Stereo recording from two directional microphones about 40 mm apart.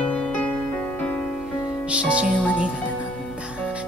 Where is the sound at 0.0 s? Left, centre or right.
Left.